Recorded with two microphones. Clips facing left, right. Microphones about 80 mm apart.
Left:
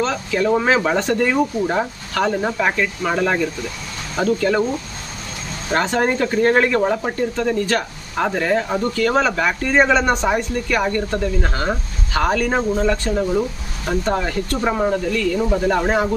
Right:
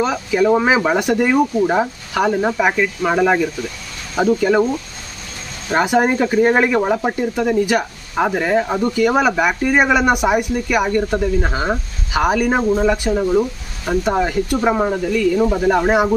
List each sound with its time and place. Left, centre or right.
0.0 s speech: centre
5.7 s speech: centre